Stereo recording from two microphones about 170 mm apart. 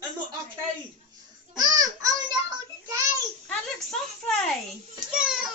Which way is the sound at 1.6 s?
25° right (ahead or behind).